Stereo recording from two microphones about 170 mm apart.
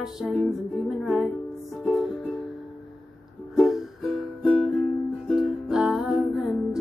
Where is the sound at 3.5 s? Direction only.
Centre (ahead or behind).